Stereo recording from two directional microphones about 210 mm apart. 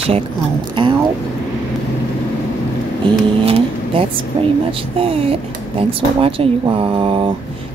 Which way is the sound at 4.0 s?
25° right (ahead or behind).